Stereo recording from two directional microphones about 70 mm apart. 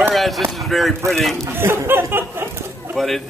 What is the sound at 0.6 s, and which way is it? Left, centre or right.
Speech, centre.